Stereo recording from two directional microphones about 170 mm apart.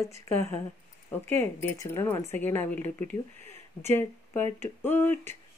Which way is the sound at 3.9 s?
10° left (ahead or behind).